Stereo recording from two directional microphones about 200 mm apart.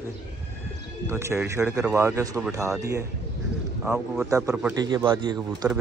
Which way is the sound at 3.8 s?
5° right (ahead or behind).